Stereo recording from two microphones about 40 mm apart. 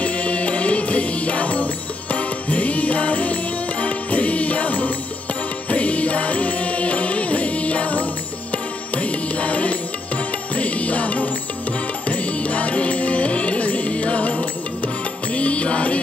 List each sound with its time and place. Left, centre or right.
0.0 s music: left